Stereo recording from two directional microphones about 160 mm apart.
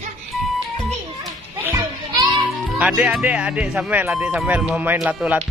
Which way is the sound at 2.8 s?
5° right (ahead or behind).